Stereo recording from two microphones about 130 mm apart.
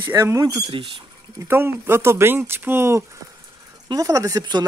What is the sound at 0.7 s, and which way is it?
Speech, 45° right (ahead or behind).